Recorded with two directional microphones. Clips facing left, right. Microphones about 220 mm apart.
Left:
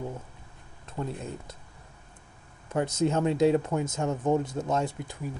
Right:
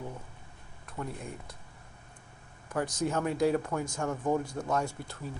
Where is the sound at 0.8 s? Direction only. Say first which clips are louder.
Left 4 dB; 25° left (ahead or behind).